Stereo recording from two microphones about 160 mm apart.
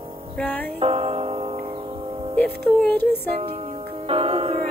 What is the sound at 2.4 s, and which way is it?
Music, 10° left (ahead or behind).